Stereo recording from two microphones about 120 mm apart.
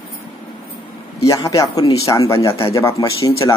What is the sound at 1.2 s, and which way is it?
Speech, 25° left (ahead or behind).